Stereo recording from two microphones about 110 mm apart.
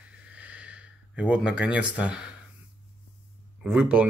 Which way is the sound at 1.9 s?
10° right (ahead or behind).